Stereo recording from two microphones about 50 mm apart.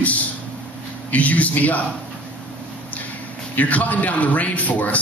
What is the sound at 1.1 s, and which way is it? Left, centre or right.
Speech, left.